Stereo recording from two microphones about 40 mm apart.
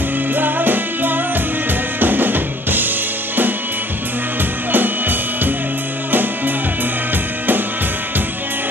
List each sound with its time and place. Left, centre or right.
0.4 s music: right
2.0 s drum: right
4.7 s music: right